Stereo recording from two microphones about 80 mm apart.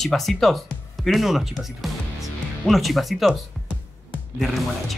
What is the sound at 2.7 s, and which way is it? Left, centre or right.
Speech, centre.